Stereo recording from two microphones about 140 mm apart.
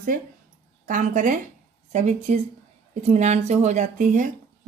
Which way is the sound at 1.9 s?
55° right (ahead or behind).